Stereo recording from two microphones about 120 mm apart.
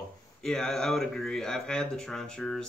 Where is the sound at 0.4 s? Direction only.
5° left (ahead or behind).